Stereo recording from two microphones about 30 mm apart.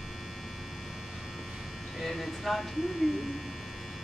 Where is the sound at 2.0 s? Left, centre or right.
Centre.